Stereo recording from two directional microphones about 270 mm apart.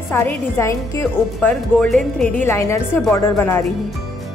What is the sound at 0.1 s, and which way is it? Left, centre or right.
A woman's voice, centre.